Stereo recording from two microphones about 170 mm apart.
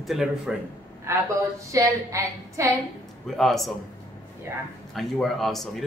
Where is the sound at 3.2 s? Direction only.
Centre (ahead or behind).